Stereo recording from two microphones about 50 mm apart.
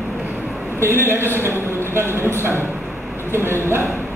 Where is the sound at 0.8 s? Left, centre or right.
Right.